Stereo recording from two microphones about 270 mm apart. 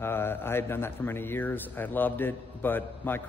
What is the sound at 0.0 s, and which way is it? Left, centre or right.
A man's voice, centre.